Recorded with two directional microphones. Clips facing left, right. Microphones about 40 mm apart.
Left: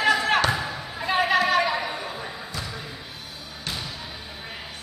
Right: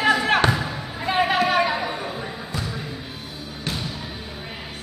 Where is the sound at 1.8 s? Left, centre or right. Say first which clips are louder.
Right 3 dB; centre.